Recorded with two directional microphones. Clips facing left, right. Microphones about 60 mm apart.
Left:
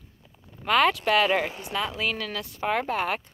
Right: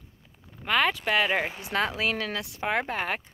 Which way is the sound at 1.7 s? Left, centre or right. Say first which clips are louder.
Right 4 dB; right.